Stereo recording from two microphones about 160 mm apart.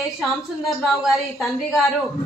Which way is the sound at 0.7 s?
Centre (ahead or behind).